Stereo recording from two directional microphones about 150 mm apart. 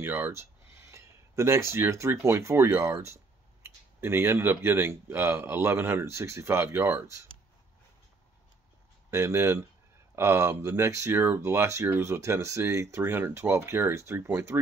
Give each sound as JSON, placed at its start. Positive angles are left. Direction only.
{"t": 0.0, "sound": "speech", "side_deg": -15}
{"t": 9.1, "sound": "speech", "side_deg": -20}